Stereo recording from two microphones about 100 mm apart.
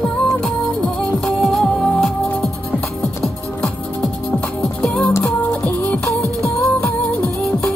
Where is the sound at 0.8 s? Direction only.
5° left (ahead or behind).